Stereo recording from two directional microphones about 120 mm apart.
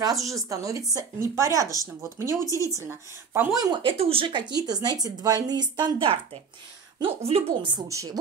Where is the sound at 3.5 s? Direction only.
35° right (ahead or behind).